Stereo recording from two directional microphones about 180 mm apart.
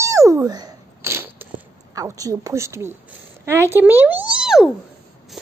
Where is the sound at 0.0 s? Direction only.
20° right (ahead or behind).